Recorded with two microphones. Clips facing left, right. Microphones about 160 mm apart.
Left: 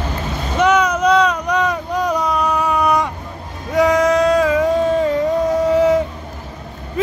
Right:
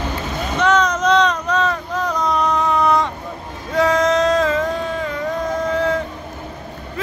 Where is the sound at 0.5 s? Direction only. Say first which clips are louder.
Left 2 dB; 10° left (ahead or behind).